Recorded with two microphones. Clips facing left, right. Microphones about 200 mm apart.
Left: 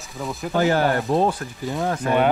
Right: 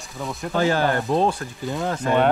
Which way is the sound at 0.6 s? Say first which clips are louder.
Left 1 dB; 15° left (ahead or behind).